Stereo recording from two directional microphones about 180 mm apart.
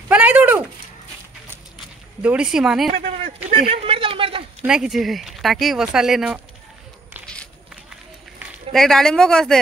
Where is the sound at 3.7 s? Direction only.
30° right (ahead or behind).